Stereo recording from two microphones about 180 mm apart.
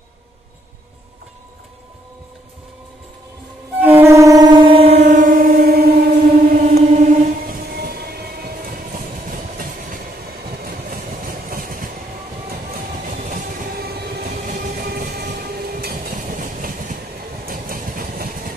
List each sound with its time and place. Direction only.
3.8 s train: 10° right (ahead or behind); by 6.6 s 60° right (ahead or behind)
6.7 s music: 50° right (ahead or behind)
10.5 s vehicle: 55° right (ahead or behind)
13.2 s train: 55° right (ahead or behind)
17.5 s vehicle: 50° right (ahead or behind)